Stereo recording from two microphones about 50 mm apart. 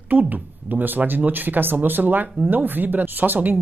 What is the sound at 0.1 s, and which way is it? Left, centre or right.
Speech, right.